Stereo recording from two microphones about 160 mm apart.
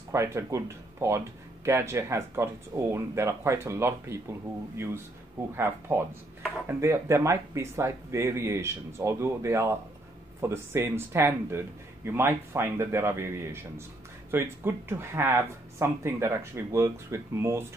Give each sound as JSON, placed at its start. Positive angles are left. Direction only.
{"t": 0.1, "sound": "speech", "side_deg": -20}